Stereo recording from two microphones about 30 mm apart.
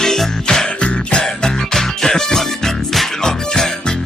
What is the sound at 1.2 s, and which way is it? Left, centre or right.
Music, centre.